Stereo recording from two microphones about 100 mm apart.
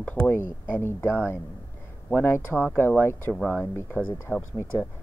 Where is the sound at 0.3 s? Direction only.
25° left (ahead or behind).